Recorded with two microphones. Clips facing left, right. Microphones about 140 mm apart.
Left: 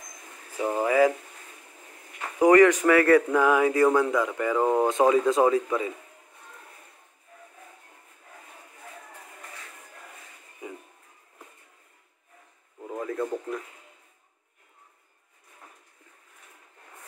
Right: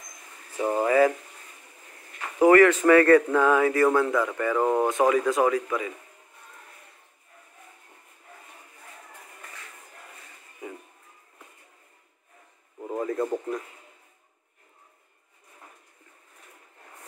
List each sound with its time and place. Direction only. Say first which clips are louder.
0.6 s speech: right 2 dB; 5° right (ahead or behind)
0.8 s speech: even; 10° left (ahead or behind)
2.3 s speech: even; 15° left (ahead or behind)
4.8 s speech: left 1 dB; 20° left (ahead or behind)
12.7 s a sound: right 4 dB; 15° right (ahead or behind)
13.2 s radio: even; 15° right (ahead or behind)